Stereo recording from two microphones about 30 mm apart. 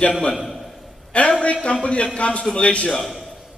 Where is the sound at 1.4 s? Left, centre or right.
Left.